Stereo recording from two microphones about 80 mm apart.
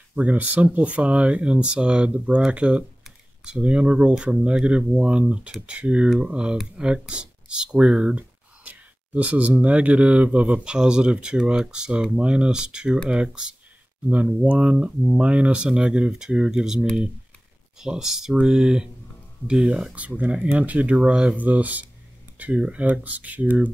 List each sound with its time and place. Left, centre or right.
0.1 s speech: centre